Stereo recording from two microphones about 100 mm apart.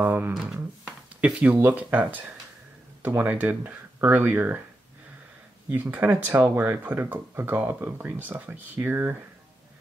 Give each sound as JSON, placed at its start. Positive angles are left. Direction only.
{"t": 0.0, "sound": "a sound", "side_deg": -20}
{"t": 0.4, "sound": "speech", "side_deg": -10}
{"t": 5.7, "sound": "speech", "side_deg": -15}